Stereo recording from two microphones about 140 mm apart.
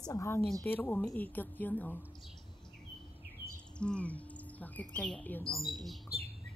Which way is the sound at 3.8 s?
10° left (ahead or behind).